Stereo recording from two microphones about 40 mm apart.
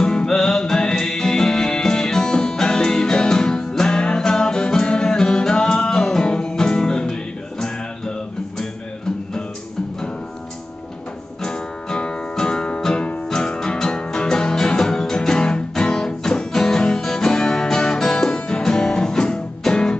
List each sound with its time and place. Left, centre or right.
0.0 s music: centre
11.4 s music: left